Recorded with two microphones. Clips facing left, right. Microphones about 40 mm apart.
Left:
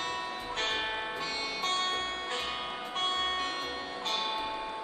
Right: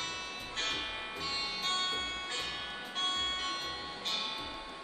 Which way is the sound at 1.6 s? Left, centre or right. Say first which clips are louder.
Left 4 dB; left.